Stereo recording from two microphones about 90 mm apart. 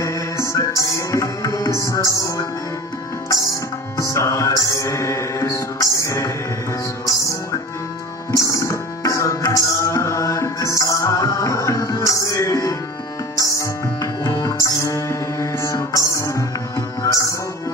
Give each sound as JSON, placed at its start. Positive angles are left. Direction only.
{"t": 0.0, "sound": "music", "side_deg": 35}
{"t": 4.0, "sound": "music", "side_deg": 35}
{"t": 8.3, "sound": "music", "side_deg": 35}
{"t": 14.2, "sound": "music", "side_deg": 40}